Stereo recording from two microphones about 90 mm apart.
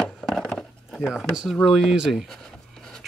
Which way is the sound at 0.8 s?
5° right (ahead or behind).